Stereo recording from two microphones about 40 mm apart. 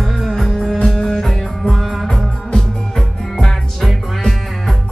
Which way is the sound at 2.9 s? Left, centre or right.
Centre.